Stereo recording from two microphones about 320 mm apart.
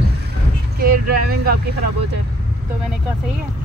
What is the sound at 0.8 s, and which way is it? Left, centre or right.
Speech, right.